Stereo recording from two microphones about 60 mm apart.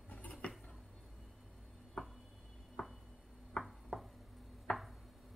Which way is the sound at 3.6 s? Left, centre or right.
Centre.